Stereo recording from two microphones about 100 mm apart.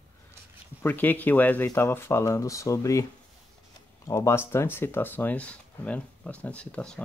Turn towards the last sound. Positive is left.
turn(degrees=10)  # may be behind; listen again after turning